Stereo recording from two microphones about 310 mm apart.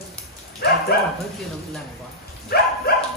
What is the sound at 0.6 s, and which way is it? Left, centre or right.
Speech, left.